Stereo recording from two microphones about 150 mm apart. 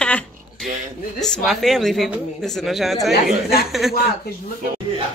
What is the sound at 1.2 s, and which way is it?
Speech, 5° left (ahead or behind).